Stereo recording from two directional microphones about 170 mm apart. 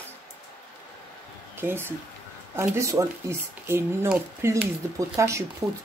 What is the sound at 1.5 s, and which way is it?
Speech, 15° right (ahead or behind).